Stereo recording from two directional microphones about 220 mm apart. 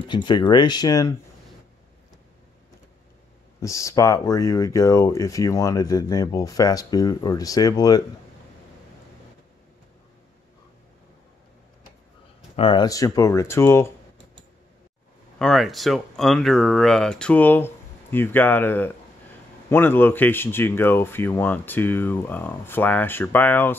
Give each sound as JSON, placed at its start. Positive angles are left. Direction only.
{"t": 0.1, "sound": "speech", "side_deg": 20}
{"t": 3.6, "sound": "speech", "side_deg": 15}
{"t": 12.5, "sound": "speech", "side_deg": 20}
{"t": 15.3, "sound": "speech", "side_deg": 0}